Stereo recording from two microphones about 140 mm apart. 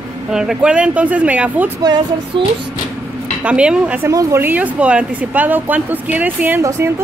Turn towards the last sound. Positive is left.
turn(degrees=-20)  # may be behind; listen again after turning